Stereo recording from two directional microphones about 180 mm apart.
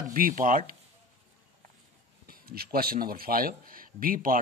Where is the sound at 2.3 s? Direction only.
55° right (ahead or behind).